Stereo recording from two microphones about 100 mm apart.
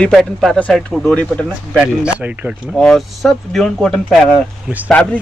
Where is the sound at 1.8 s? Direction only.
15° right (ahead or behind).